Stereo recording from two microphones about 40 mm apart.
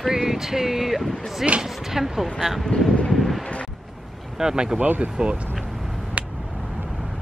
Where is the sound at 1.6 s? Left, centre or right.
Centre.